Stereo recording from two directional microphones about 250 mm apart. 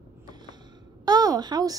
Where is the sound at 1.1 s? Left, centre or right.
Centre.